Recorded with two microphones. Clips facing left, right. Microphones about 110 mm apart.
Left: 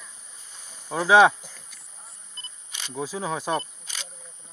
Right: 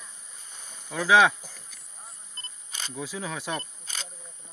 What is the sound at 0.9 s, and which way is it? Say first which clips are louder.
Speech: left 4 dB; 35° left (ahead or behind).